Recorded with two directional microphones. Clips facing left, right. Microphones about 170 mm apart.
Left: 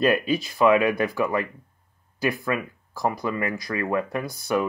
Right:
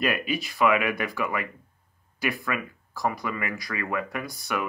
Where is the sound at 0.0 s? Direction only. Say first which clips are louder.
Left 6 dB; 30° left (ahead or behind).